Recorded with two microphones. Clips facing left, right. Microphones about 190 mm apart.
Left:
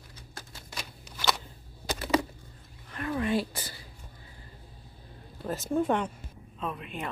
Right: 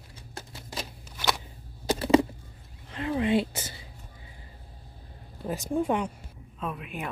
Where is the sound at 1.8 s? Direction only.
30° right (ahead or behind).